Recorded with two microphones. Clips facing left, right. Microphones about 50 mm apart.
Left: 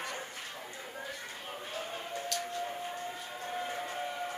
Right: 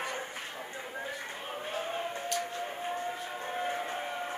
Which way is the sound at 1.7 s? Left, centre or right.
Right.